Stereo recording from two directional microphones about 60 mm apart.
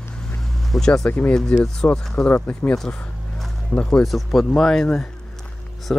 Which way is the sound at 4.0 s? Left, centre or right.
Centre.